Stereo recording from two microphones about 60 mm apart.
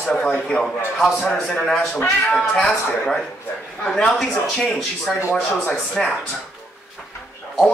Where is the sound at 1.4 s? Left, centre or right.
Centre.